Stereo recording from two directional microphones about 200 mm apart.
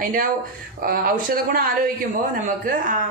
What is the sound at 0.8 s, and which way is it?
A woman's voice, 45° right (ahead or behind).